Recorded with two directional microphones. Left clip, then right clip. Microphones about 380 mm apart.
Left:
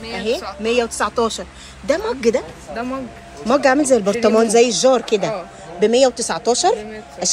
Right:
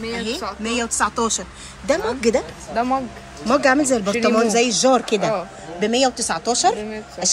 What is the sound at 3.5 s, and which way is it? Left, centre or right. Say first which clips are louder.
Speech: left 2 dB; centre.